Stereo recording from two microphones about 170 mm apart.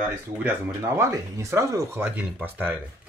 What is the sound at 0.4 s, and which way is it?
Speech, 10° right (ahead or behind).